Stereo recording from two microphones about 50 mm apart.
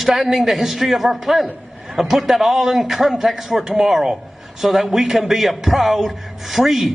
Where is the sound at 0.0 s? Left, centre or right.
Centre.